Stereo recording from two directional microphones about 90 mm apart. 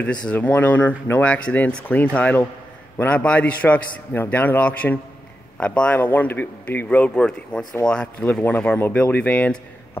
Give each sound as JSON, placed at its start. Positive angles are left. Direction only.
{"t": 0.0, "sound": "a man's voice", "side_deg": 15}